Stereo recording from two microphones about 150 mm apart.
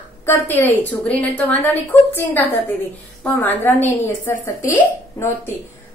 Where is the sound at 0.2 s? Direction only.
15° left (ahead or behind).